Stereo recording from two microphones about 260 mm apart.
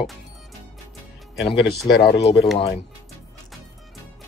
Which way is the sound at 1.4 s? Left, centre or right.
Left.